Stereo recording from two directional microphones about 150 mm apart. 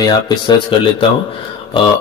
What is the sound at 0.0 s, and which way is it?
A man's voice, 30° left (ahead or behind).